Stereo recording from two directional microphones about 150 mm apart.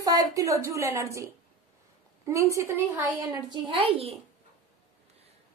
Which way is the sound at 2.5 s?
20° right (ahead or behind).